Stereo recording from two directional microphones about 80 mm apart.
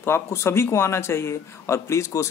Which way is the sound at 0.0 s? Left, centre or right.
Left.